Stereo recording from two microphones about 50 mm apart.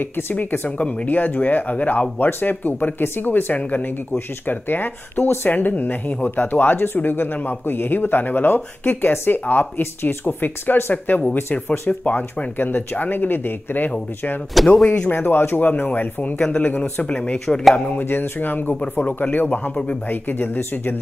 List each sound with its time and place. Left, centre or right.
0.0 s speech: left
14.5 s speech: centre
14.9 s speech: left
16.2 s a man's voice: left
17.5 s speech: centre
18.0 s speech: left
18.8 s a man's voice: left
20.1 s speech: left